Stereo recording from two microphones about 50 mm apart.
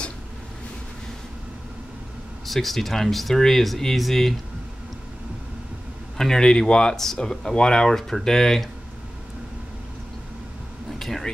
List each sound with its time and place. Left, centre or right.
2.4 s speech: centre
6.1 s speech: centre
11.0 s a sound: centre